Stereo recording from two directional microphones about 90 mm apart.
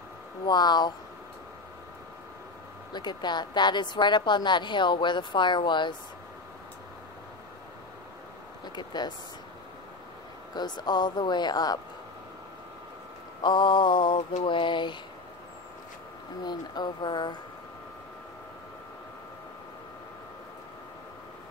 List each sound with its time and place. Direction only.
0.5 s speech: 55° left (ahead or behind)
2.9 s a woman's voice: 55° left (ahead or behind)
8.6 s speech: 55° left (ahead or behind)
10.5 s speech: 50° left (ahead or behind)
13.4 s a woman's voice: 60° left (ahead or behind)
16.4 s a woman's voice: 55° left (ahead or behind)